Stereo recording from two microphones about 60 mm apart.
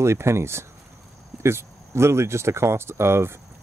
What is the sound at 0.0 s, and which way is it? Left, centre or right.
Speech, right.